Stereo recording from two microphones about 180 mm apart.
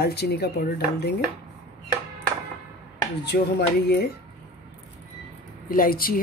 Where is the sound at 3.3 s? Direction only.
55° left (ahead or behind).